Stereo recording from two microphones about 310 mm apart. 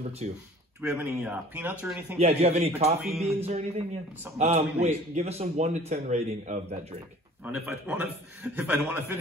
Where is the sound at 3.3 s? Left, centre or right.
Centre.